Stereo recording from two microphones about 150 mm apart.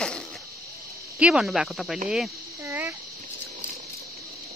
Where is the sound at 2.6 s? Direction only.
15° right (ahead or behind).